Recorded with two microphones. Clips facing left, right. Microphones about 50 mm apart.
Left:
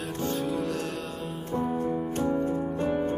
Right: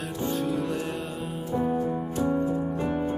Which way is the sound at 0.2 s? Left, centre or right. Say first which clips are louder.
Right 2 dB; centre.